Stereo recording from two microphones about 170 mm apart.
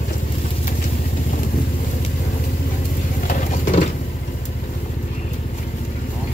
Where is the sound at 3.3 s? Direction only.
45° left (ahead or behind).